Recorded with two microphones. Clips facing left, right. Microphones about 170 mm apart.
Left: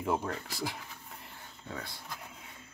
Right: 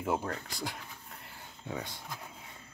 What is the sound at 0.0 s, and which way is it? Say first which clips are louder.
Speech: left 1 dB; centre (ahead or behind).